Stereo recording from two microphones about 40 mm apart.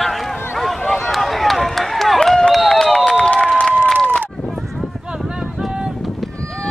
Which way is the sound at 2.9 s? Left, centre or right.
Centre.